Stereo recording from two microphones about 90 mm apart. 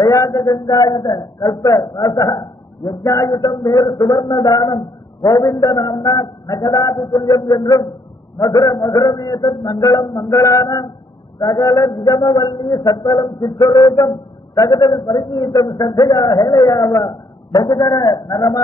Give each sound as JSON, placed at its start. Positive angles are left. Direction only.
{"t": 0.0, "sound": "a man's voice", "side_deg": 35}